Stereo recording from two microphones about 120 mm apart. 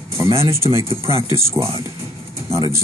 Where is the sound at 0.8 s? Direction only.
55° right (ahead or behind).